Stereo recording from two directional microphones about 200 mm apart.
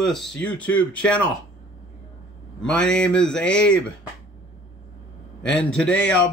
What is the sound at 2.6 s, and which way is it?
A man's voice, 5° left (ahead or behind).